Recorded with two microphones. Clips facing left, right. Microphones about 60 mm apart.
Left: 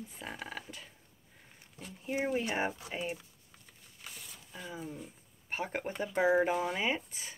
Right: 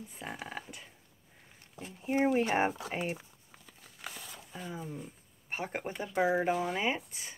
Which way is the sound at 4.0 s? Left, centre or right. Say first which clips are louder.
Right 5 dB; right.